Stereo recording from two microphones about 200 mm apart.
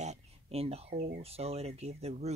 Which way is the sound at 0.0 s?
35° right (ahead or behind).